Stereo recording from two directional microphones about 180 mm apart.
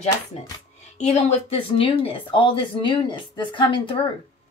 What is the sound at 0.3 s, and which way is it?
Speech, 35° left (ahead or behind).